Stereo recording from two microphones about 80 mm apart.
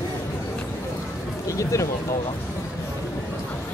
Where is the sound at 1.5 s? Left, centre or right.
Left.